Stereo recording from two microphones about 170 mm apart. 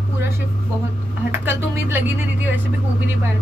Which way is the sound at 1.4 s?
10° right (ahead or behind).